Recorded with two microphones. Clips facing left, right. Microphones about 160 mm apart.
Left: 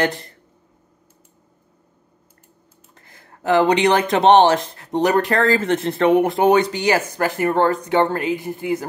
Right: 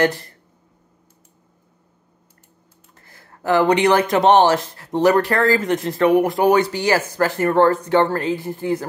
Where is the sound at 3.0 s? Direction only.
20° left (ahead or behind).